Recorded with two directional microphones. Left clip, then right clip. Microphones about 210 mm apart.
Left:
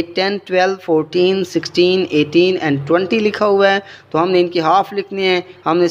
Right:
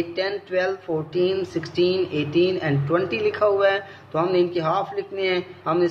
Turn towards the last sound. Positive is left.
turn(degrees=45)  # may be behind; listen again after turning